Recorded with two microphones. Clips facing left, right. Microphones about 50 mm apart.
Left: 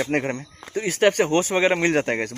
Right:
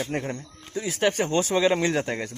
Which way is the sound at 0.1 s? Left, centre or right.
Left.